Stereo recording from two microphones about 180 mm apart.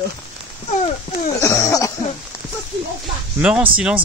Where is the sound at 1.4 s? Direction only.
15° left (ahead or behind).